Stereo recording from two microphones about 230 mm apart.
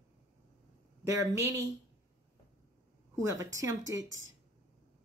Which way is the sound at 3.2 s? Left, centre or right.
Centre.